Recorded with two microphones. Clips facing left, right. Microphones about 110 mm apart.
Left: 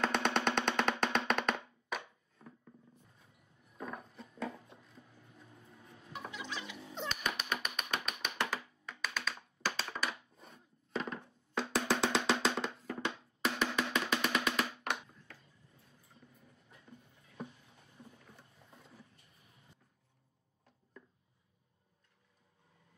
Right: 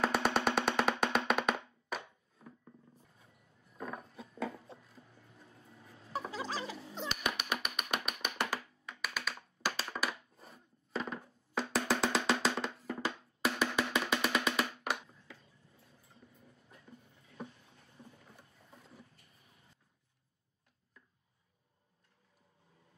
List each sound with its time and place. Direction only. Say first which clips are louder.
0.0 s music: right 1 dB; 5° right (ahead or behind)
3.7 s music: right 1 dB; centre (ahead or behind)
6.3 s music: right 5 dB; 35° right (ahead or behind)
7.0 s cat: right 1 dB; 5° right (ahead or behind)